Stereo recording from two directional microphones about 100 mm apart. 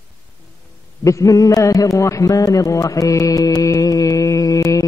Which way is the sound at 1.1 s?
35° left (ahead or behind).